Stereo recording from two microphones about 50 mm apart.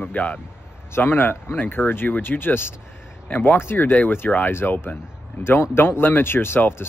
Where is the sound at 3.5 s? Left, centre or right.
Left.